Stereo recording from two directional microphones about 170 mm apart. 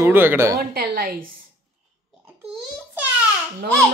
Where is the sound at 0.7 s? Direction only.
60° right (ahead or behind).